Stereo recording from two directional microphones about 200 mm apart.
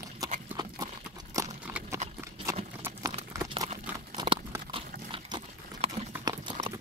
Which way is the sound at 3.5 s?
25° right (ahead or behind).